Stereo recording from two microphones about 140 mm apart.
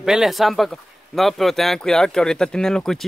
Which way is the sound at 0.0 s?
5° right (ahead or behind).